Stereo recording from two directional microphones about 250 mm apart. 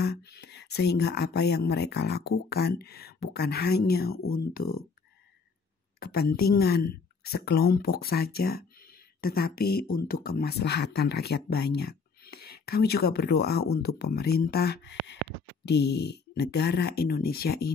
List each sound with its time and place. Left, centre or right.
0.0 s speech: left
5.9 s speech: left